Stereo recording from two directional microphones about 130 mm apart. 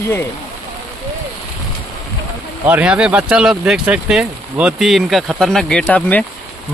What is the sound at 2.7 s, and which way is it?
Speech, 10° right (ahead or behind).